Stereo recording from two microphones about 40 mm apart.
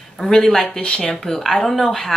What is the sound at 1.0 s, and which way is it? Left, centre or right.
Speech, centre.